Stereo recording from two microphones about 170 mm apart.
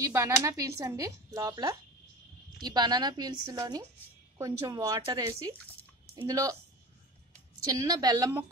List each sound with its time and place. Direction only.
0.0 s speech: 20° right (ahead or behind)
7.6 s speech: 20° right (ahead or behind)